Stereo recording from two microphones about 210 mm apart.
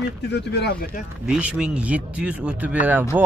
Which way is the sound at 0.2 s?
55° left (ahead or behind).